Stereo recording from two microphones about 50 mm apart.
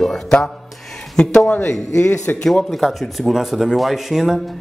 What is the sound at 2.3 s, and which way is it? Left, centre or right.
Speech, left.